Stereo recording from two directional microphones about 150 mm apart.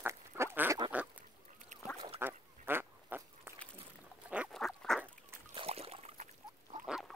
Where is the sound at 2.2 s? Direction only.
15° right (ahead or behind).